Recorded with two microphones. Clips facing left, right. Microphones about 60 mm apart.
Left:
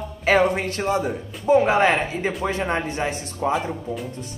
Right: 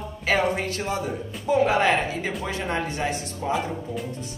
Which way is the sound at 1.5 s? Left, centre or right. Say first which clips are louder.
Left 3 dB; left.